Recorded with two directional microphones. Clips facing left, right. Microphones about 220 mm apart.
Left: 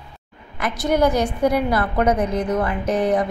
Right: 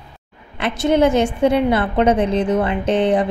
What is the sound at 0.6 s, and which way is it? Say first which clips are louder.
A woman's voice: right 3 dB; 25° right (ahead or behind).